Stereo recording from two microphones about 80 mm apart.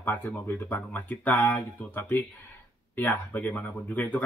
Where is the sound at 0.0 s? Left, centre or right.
Left.